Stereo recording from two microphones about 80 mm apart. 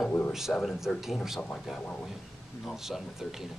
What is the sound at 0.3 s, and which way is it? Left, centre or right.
Speech, centre.